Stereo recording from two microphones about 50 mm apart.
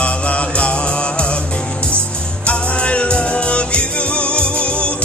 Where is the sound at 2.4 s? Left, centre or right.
Left.